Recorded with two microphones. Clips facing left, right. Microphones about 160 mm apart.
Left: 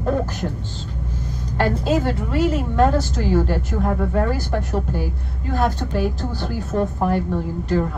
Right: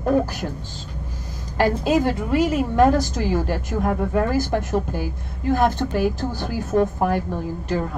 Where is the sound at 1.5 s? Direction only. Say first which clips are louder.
Right 1 dB; 10° right (ahead or behind).